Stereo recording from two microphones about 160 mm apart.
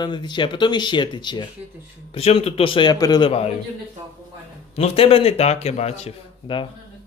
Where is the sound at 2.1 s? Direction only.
40° left (ahead or behind).